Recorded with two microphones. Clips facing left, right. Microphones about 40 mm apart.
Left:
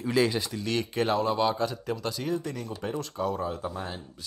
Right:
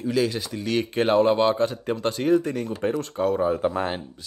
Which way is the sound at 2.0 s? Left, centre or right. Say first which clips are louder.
Right 13 dB; right.